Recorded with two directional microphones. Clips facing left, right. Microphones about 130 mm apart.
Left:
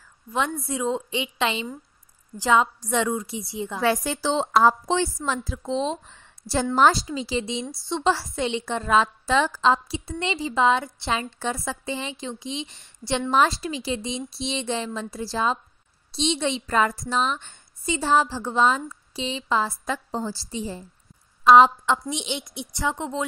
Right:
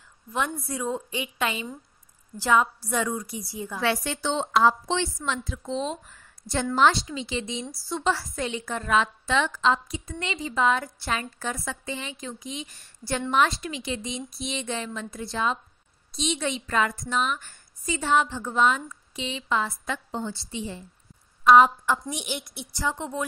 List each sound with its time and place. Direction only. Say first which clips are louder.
0.3 s a woman's voice: left 3 dB; 25° left (ahead or behind)
3.8 s a woman's voice: left 3 dB; 35° left (ahead or behind)
13.3 s a woman's voice: left 2 dB; 35° left (ahead or behind)